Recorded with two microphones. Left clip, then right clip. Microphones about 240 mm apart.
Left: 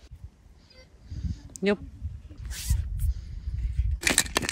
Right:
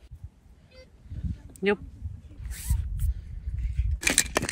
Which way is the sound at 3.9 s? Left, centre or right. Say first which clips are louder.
Even; centre.